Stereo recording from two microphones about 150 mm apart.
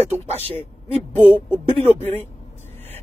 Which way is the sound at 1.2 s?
15° left (ahead or behind).